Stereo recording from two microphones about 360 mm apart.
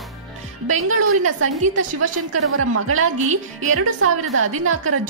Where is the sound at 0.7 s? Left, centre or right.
Right.